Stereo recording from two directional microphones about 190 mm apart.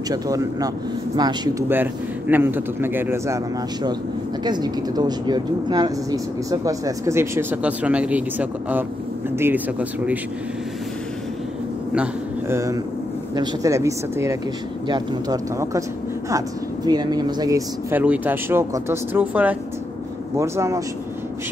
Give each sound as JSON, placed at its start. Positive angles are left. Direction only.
{"t": 0.1, "sound": "speech", "side_deg": -20}
{"t": 1.7, "sound": "speech", "side_deg": -10}
{"t": 4.5, "sound": "speech", "side_deg": -20}
{"t": 11.9, "sound": "a man's voice", "side_deg": -10}